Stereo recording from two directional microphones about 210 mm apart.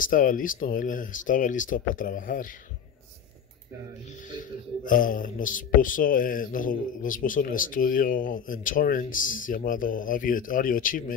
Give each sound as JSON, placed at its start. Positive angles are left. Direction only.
{"t": 0.0, "sound": "speech", "side_deg": 40}
{"t": 4.4, "sound": "speech", "side_deg": 40}